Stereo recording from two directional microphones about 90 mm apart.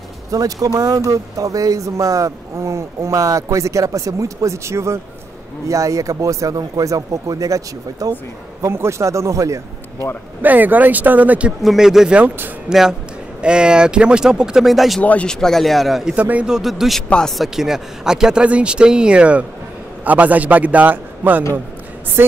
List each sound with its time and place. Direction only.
0.3 s speech: 40° right (ahead or behind)
10.4 s speech: 20° right (ahead or behind)
11.6 s a man's voice: 5° right (ahead or behind)
15.0 s a man's voice: 15° left (ahead or behind); by 16.2 s 5° right (ahead or behind)
16.2 s speech: 15° right (ahead or behind); by 17.5 s 5° left (ahead or behind)
17.6 s speech: 5° right (ahead or behind)